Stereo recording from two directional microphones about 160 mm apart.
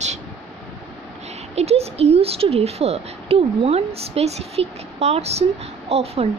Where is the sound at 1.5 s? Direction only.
40° right (ahead or behind).